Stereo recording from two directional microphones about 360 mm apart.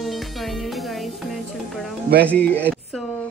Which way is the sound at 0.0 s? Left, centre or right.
Centre.